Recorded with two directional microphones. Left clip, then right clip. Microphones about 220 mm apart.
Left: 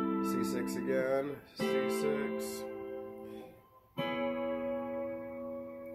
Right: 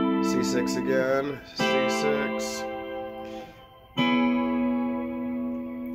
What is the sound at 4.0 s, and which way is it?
Music, 40° right (ahead or behind).